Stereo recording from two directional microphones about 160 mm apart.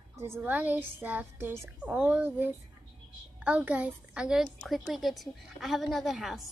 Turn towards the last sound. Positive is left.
turn(degrees=0)  # may be behind; listen again after turning